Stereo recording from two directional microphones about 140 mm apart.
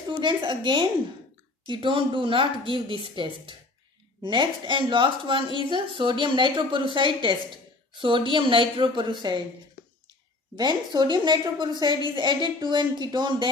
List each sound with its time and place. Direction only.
0.2 s a woman's voice: 35° right (ahead or behind)
10.5 s a woman's voice: 30° right (ahead or behind)